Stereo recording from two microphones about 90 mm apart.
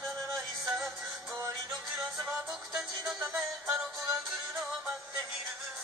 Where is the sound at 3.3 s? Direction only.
20° right (ahead or behind).